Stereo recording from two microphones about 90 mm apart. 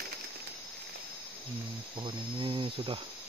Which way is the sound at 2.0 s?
65° right (ahead or behind).